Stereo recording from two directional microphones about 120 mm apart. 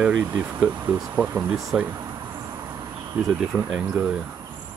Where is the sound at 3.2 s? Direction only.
5° right (ahead or behind).